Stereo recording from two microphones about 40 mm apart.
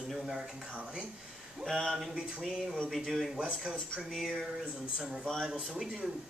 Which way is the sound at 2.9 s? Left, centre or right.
Centre.